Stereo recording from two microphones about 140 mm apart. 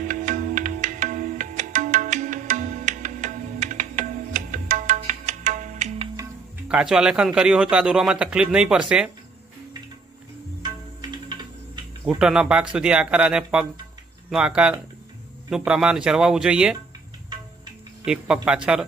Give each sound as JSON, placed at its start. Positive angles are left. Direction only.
{"t": 0.0, "sound": "music", "side_deg": -65}
{"t": 6.7, "sound": "a man's voice", "side_deg": -5}
{"t": 10.6, "sound": "music", "side_deg": -30}
{"t": 12.0, "sound": "a man's voice", "side_deg": -5}
{"t": 18.3, "sound": "speech", "side_deg": -10}